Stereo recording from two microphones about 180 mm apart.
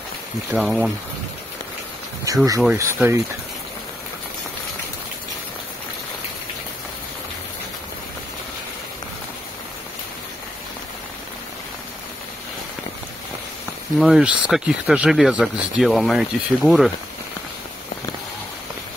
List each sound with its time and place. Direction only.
0.5 s speech: 5° right (ahead or behind)
2.3 s speech: 20° right (ahead or behind)
13.9 s speech: centre (ahead or behind)